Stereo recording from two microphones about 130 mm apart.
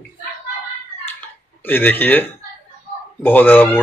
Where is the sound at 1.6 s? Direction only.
15° left (ahead or behind).